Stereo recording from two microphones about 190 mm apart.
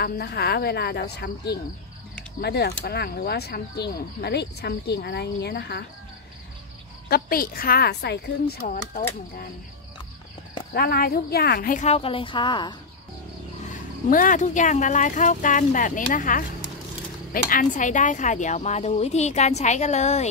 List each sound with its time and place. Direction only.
0.0 s speech: 55° left (ahead or behind)
7.1 s speech: 50° left (ahead or behind)
10.7 s speech: 55° left (ahead or behind); by 12.7 s 25° left (ahead or behind)
13.7 s speech: 45° left (ahead or behind)
17.5 s speech: 45° left (ahead or behind)